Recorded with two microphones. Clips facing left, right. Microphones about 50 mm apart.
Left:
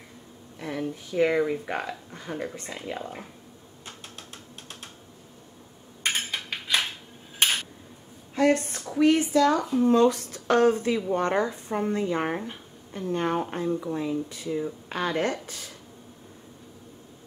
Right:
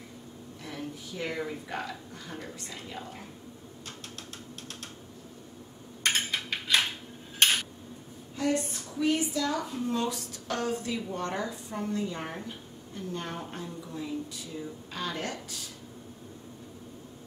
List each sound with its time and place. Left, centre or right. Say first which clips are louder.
0.6 s a woman's voice: left 8 dB; left
6.0 s a sound: even; centre
7.4 s dishes: even; centre
8.4 s a woman's voice: left 7 dB; left